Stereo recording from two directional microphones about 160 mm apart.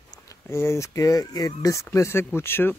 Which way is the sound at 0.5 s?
15° left (ahead or behind).